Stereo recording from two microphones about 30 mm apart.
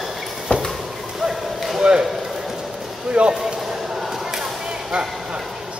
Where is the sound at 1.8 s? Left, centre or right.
Right.